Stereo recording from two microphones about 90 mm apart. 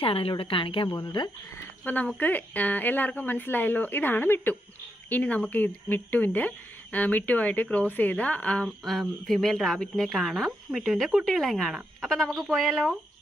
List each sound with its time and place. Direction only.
0.0 s a woman's voice: 90° left
0.9 s speech: 55° left (ahead or behind)
2.1 s speech: 20° left (ahead or behind)
8.6 s a woman's voice: centre (ahead or behind)